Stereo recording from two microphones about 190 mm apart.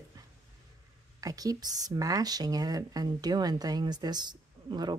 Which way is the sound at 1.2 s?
20° right (ahead or behind).